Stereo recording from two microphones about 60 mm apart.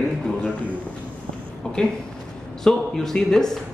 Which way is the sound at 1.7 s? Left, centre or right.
Centre.